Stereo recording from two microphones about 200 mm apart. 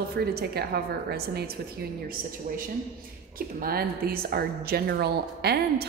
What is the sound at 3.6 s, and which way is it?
A woman's voice, 50° right (ahead or behind).